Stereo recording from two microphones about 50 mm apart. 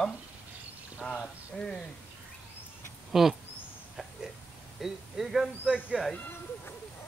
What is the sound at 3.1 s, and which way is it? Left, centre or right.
Speech, centre.